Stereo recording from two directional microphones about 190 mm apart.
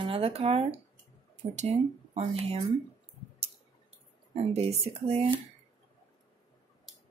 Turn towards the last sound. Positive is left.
turn(degrees=-30)  # may be behind; listen again after turning